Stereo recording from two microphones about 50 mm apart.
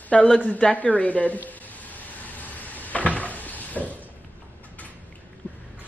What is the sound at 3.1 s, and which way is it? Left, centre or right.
Cupboard open or close, left.